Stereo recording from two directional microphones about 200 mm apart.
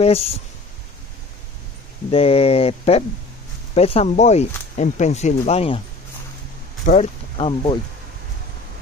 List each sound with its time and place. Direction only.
0.0 s speech: 30° left (ahead or behind)
2.0 s speech: 30° left (ahead or behind)
6.8 s speech: 40° left (ahead or behind)
7.3 s speech: 25° left (ahead or behind)